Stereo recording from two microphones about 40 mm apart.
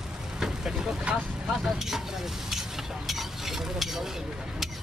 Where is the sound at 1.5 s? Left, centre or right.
Centre.